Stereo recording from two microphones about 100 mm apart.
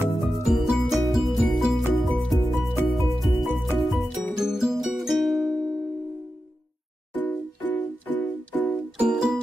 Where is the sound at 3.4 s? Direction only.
Centre (ahead or behind).